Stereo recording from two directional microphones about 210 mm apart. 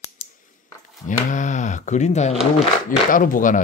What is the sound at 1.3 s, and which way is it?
Speech, 35° left (ahead or behind).